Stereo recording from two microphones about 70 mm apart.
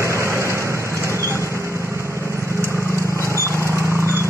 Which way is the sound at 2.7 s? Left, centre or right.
Left.